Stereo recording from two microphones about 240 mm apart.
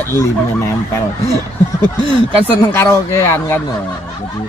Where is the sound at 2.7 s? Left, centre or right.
Centre.